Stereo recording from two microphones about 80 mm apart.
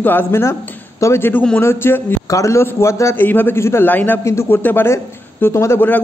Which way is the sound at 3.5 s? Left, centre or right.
Left.